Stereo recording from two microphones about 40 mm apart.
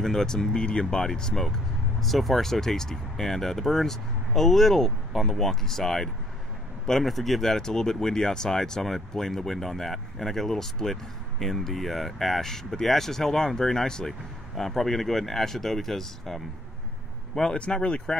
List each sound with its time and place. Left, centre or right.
0.0 s speech: centre
2.0 s speech: centre
7.5 s speech: centre
17.8 s speech: left